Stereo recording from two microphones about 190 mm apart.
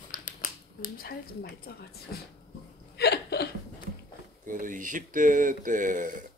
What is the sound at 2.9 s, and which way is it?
Hiccup, 60° left (ahead or behind).